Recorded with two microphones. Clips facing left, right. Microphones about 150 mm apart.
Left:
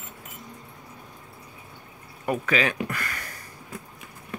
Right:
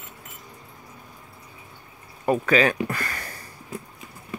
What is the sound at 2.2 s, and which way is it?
Speech, 40° right (ahead or behind).